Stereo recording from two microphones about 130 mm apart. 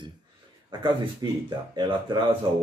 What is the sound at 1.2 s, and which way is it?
Speech, 35° right (ahead or behind).